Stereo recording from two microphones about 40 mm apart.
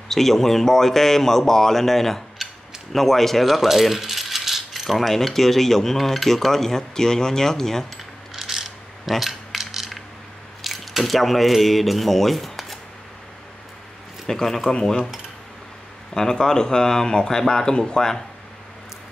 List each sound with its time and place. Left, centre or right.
0.1 s speech: centre
2.9 s rattle: centre
6.2 s speech: centre
8.4 s a sound: centre
9.2 s mechanisms: centre
10.6 s speech: centre
14.2 s speech: centre
16.2 s speech: centre